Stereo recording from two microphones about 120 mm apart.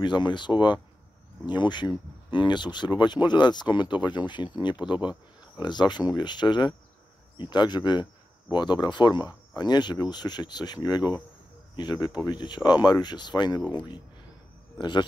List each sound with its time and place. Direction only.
0.0 s speech: 40° left (ahead or behind)
13.6 s speech: 15° right (ahead or behind)
14.8 s speech: 40° left (ahead or behind)